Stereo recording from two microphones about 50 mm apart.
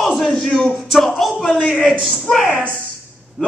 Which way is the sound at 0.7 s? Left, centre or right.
Centre.